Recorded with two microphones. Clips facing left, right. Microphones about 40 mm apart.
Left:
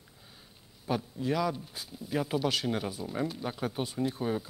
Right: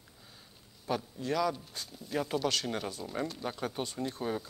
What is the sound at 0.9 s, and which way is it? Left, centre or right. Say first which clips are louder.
Speech: left 2 dB; centre.